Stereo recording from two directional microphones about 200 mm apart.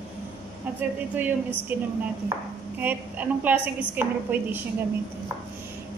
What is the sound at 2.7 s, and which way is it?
A woman's voice, 10° right (ahead or behind).